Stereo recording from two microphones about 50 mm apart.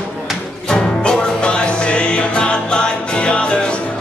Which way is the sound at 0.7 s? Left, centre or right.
Centre.